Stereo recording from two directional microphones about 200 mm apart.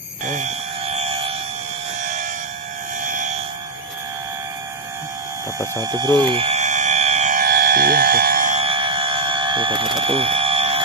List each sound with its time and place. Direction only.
0.3 s fire alarm: 35° right (ahead or behind)
3.0 s vehicle: 40° right (ahead or behind)
5.9 s a sound: 20° right (ahead or behind)